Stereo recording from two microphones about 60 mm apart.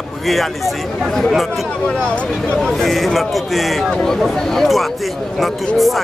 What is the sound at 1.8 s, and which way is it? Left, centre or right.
Speech, centre.